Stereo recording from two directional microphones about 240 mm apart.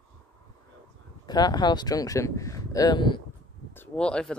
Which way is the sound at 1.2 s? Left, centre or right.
Centre.